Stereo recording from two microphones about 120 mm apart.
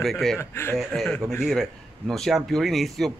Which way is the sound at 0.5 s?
20° left (ahead or behind).